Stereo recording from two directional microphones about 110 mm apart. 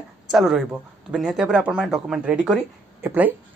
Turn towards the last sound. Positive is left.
turn(degrees=-15)  # may be behind; listen again after turning